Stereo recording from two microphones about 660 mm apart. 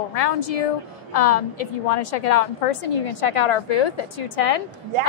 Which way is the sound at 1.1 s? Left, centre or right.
Left.